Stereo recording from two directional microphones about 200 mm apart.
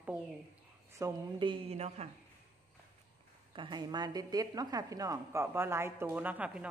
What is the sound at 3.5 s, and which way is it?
A woman's voice, 25° right (ahead or behind).